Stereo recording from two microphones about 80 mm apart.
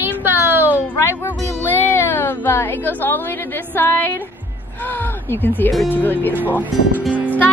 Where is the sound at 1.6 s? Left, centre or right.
Left.